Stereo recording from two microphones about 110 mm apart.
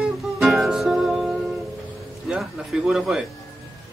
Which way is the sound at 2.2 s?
5° right (ahead or behind).